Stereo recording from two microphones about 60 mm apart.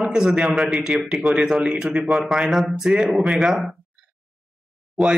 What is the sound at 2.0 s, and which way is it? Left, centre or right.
A man's voice, centre.